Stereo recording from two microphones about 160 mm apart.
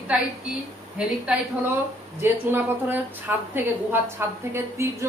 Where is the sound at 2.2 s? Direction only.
15° right (ahead or behind).